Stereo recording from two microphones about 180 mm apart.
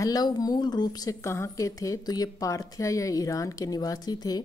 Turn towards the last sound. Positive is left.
turn(degrees=20)  # may be behind; listen again after turning